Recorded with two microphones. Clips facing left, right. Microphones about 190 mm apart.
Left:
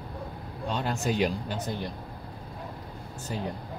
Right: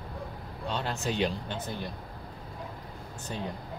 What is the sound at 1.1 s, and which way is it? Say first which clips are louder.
Speech: left 3 dB; 10° left (ahead or behind).